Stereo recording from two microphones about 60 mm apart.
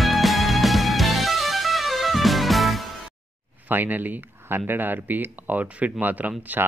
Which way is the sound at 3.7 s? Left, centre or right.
Right.